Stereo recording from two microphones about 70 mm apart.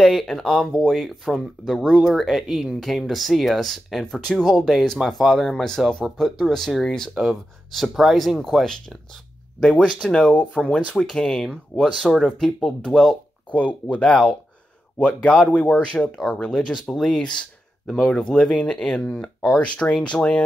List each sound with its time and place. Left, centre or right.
0.0 s speech: centre
8.6 s speech: centre
13.5 s speech: centre
16.7 s speech: centre